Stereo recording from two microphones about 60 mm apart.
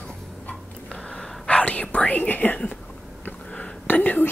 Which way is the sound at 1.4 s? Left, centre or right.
Centre.